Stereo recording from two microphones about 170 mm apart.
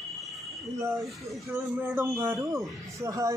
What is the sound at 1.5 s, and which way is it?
A man's voice, 15° right (ahead or behind).